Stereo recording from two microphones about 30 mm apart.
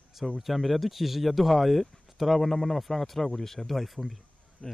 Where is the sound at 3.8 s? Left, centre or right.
Centre.